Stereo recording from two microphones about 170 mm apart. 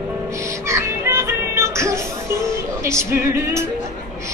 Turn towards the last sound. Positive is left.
turn(degrees=-15)  # may be behind; listen again after turning